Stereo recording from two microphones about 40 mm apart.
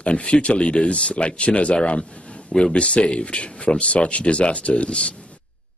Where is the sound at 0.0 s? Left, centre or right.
Left.